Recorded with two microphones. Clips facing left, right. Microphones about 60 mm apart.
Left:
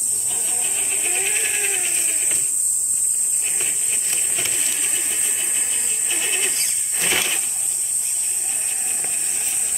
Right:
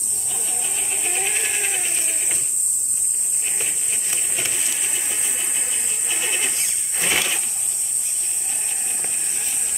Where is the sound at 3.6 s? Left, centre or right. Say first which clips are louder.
Even; centre.